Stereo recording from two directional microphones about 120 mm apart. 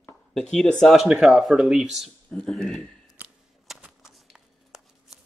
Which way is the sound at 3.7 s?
5° right (ahead or behind).